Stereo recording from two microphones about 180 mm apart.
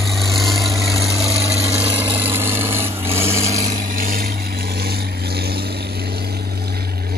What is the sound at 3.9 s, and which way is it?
Vehicle, 50° right (ahead or behind).